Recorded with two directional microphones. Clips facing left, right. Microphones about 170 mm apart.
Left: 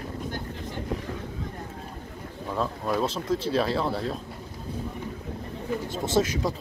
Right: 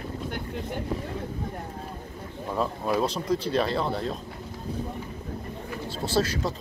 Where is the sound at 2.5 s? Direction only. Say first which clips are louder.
Right 1 dB; 5° right (ahead or behind).